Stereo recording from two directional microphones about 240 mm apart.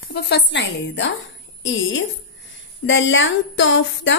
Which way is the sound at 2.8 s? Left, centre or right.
Left.